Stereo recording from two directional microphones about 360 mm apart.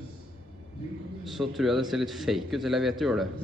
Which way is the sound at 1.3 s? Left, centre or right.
Centre.